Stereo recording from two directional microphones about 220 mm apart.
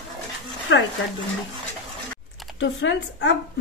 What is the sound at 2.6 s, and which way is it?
Speech, 55° left (ahead or behind).